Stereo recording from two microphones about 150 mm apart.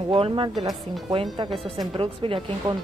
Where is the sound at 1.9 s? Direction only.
35° right (ahead or behind).